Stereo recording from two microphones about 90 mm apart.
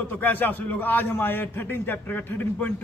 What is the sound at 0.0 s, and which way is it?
A man's voice, 20° left (ahead or behind).